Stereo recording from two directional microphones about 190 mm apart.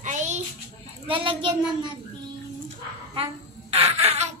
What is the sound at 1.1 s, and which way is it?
Speech, 25° right (ahead or behind).